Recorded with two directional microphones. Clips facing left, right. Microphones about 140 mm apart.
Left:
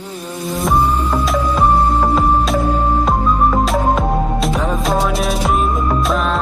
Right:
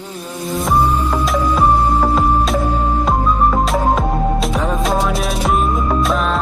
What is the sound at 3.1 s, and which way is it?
Music, centre (ahead or behind).